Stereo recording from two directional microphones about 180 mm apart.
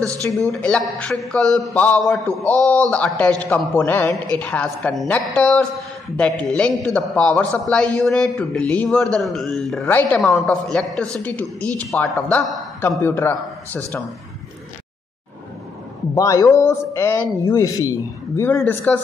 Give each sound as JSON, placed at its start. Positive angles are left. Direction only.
{"t": 0.5, "sound": "a woman's voice", "side_deg": 5}
{"t": 16.2, "sound": "a woman's voice", "side_deg": 20}